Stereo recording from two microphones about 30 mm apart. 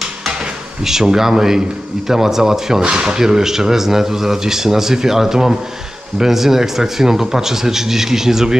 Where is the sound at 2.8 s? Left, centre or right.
Right.